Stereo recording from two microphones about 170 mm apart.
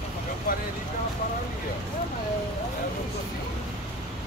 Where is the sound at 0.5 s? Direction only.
55° left (ahead or behind).